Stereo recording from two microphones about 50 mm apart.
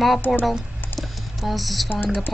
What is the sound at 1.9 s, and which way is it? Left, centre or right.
Speech, left.